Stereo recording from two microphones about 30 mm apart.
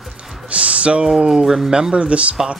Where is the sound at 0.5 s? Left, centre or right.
Right.